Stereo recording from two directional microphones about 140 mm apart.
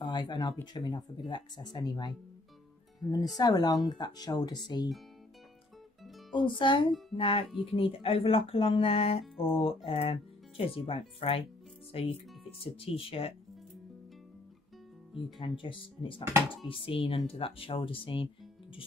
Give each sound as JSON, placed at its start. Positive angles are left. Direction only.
{"t": 0.0, "sound": "speech", "side_deg": 30}
{"t": 6.3, "sound": "speech", "side_deg": 35}
{"t": 9.2, "sound": "speech", "side_deg": 0}
{"t": 9.8, "sound": "speech", "side_deg": 45}
{"t": 15.3, "sound": "speech", "side_deg": 35}